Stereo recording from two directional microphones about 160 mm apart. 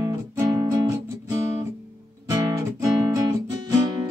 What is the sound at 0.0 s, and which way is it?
Guitar, 15° right (ahead or behind).